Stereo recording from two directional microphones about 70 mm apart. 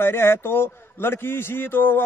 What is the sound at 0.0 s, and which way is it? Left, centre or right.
A man's voice, left.